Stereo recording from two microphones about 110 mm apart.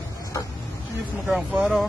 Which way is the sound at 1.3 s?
10° right (ahead or behind).